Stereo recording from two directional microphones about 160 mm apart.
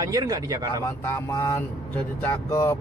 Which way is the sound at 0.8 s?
15° left (ahead or behind).